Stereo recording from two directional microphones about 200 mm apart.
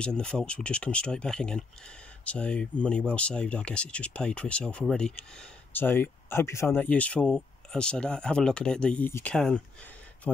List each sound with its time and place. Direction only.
0.0 s speech: 5° left (ahead or behind)